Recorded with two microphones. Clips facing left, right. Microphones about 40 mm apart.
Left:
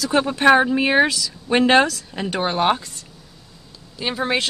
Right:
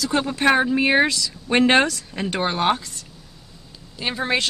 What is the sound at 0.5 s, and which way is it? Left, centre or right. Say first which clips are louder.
Speech: left 2 dB; centre.